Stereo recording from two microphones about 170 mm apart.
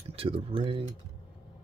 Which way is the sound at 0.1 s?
35° right (ahead or behind).